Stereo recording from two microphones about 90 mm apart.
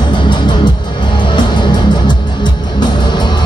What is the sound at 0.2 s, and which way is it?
Music, 60° left (ahead or behind).